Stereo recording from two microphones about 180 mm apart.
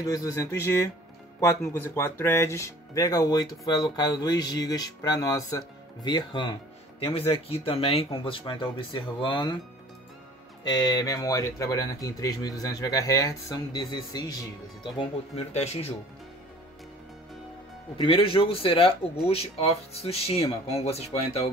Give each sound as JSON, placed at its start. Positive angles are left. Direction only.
{"t": 0.0, "sound": "speech", "side_deg": 20}
{"t": 10.6, "sound": "speech", "side_deg": 25}
{"t": 17.9, "sound": "speech", "side_deg": 30}